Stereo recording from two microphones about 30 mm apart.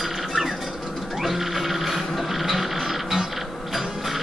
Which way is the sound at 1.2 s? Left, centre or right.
Centre.